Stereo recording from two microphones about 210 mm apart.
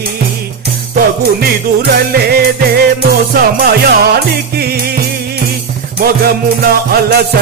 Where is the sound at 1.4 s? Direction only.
50° right (ahead or behind).